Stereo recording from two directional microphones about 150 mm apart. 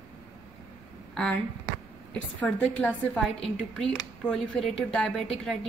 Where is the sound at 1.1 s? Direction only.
5° left (ahead or behind).